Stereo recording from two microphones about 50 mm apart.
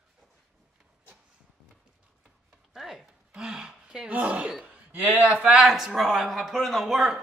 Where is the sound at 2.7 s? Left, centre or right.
Centre.